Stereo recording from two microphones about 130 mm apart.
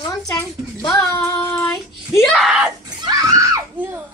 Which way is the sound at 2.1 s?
Centre (ahead or behind).